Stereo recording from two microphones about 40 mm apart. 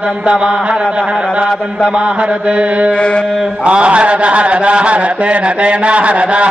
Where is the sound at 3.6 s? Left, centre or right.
Right.